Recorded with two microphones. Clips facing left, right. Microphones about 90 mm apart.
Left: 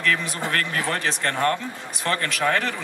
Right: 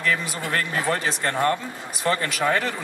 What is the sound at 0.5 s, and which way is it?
Speech, 15° right (ahead or behind).